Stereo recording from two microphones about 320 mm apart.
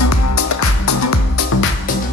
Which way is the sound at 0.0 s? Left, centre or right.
Left.